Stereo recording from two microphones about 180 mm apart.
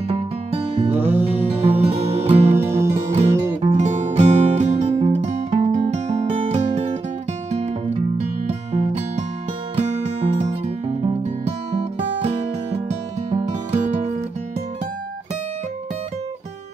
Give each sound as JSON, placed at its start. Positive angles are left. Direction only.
{"t": 0.1, "sound": "music", "side_deg": -30}
{"t": 1.0, "sound": "music", "side_deg": -10}
{"t": 1.8, "sound": "music", "side_deg": -35}
{"t": 2.5, "sound": "music", "side_deg": -15}
{"t": 3.6, "sound": "music", "side_deg": -40}